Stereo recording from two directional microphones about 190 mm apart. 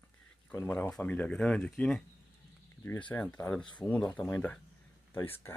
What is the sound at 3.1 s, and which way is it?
Speech, 10° left (ahead or behind).